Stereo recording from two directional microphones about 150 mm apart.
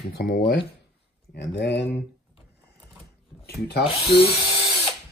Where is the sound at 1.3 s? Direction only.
90° left.